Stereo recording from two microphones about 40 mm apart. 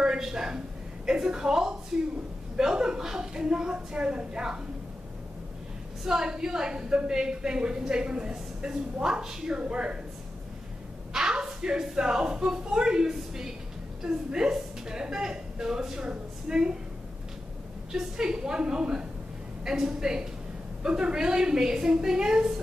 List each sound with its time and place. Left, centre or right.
0.0 s a woman's voice: centre
6.0 s a woman's voice: centre
9.6 s a woman's voice: right
11.1 s a woman's voice: centre
17.9 s a woman's voice: centre